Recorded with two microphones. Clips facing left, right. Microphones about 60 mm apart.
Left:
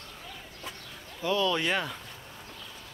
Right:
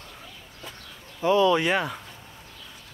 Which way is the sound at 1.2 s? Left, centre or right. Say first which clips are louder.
Right 7 dB; right.